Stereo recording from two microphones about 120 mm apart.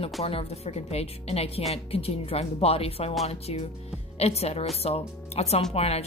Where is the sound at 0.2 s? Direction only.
55° left (ahead or behind).